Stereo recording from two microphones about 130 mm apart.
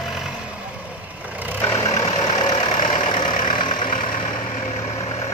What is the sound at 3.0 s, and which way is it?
Vehicle, 40° left (ahead or behind).